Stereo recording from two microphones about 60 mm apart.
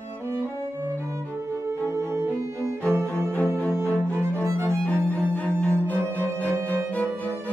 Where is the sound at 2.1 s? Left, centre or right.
Right.